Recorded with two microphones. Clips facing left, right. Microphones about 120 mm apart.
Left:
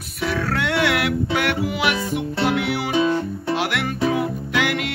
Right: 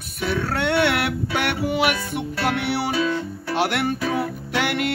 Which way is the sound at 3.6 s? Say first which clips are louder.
Right 4 dB; 35° right (ahead or behind).